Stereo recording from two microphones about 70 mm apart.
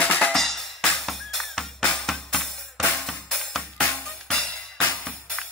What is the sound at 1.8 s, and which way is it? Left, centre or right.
Music, centre.